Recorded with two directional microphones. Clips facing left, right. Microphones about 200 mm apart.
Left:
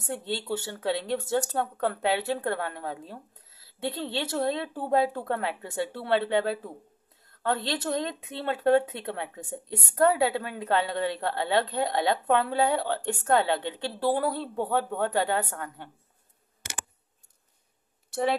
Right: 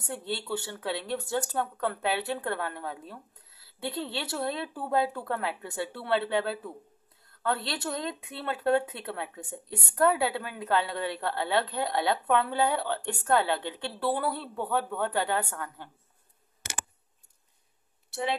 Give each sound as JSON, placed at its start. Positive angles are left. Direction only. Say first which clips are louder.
{"t": 0.0, "sound": "speech", "louder": "left 2 dB", "side_deg": 20}